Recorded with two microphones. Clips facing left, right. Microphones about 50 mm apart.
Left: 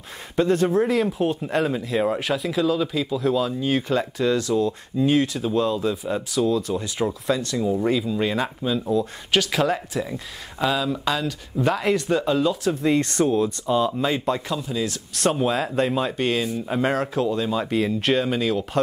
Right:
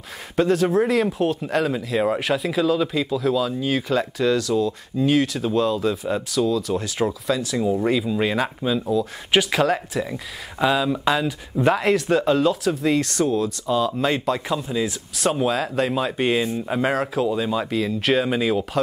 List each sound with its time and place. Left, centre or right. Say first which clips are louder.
0.5 s speech: right 1 dB; centre
4.5 s speech: even; left
4.9 s speech: right 1 dB; centre
13.0 s speech: left 1 dB; centre
13.9 s speech: right 1 dB; centre
15.1 s speech: even; centre
16.2 s speech: right 2 dB; centre
17.6 s speech: left 1 dB; centre
18.0 s speech: right 1 dB; centre